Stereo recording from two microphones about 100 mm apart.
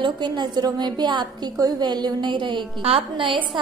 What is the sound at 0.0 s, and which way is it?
Music, 50° right (ahead or behind).